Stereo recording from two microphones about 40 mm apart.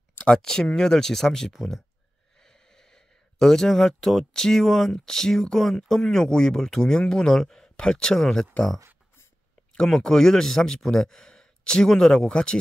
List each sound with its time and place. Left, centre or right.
0.2 s speech: centre
9.8 s speech: centre